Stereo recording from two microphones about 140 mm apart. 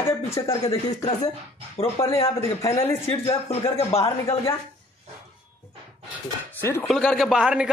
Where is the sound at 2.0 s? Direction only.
25° left (ahead or behind).